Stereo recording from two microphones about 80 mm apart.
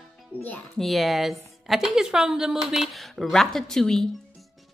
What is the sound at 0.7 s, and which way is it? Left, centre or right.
A woman's voice, centre.